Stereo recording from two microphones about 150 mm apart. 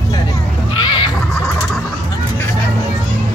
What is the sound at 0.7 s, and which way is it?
Neigh, 30° left (ahead or behind).